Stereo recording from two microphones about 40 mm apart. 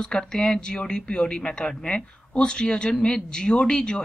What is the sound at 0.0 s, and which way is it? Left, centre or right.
Speech, centre.